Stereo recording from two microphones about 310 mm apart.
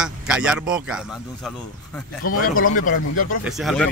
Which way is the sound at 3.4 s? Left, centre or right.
Centre.